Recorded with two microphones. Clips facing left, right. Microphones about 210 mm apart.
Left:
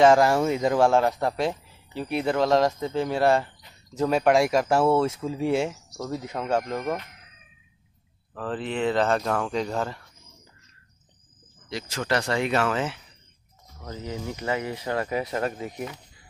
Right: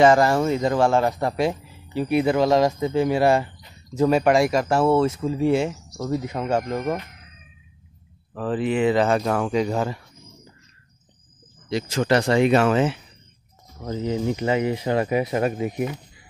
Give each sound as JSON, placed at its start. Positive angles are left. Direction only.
{"t": 0.0, "sound": "speech", "side_deg": 0}
{"t": 8.4, "sound": "speech", "side_deg": -10}
{"t": 11.7, "sound": "speech", "side_deg": -20}